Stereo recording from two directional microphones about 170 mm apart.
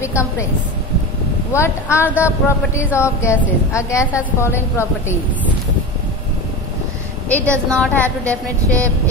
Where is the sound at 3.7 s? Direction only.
15° left (ahead or behind).